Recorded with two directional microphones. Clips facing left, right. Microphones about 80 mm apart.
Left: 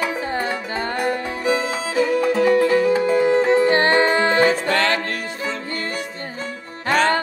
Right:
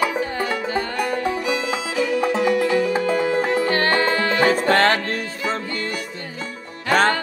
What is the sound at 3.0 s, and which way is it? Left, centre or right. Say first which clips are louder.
Music: left 4 dB; left.